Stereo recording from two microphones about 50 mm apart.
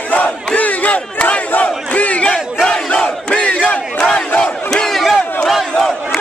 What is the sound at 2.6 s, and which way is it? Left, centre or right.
Crowd, centre.